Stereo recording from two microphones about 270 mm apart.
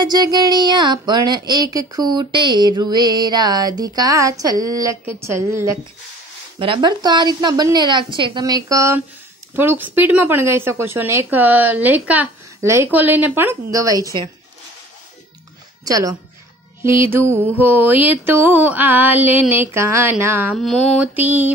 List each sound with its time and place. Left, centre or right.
0.0 s a woman's voice: centre
15.8 s a woman's voice: centre